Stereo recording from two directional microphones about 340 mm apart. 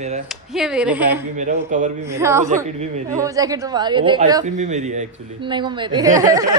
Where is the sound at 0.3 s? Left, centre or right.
Centre.